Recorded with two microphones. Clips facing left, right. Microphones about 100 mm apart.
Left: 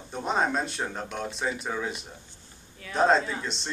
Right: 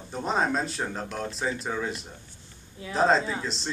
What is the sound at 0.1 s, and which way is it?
A man's voice, centre (ahead or behind).